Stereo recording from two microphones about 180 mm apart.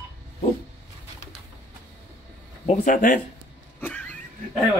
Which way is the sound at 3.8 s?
10° left (ahead or behind).